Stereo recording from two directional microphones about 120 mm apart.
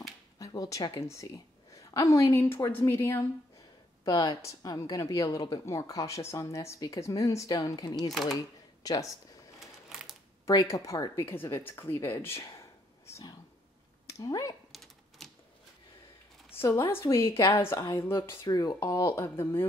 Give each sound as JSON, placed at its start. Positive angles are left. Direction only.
{"t": 0.4, "sound": "a woman's voice", "side_deg": 30}
{"t": 4.0, "sound": "a woman's voice", "side_deg": 30}
{"t": 8.1, "sound": "speech", "side_deg": 0}
{"t": 8.8, "sound": "speech", "side_deg": 30}
{"t": 9.6, "sound": "a sound", "side_deg": -5}
{"t": 10.4, "sound": "a woman's voice", "side_deg": 25}
{"t": 14.0, "sound": "a sound", "side_deg": 30}
{"t": 14.7, "sound": "typewriter", "side_deg": 0}
{"t": 16.5, "sound": "a woman's voice", "side_deg": 20}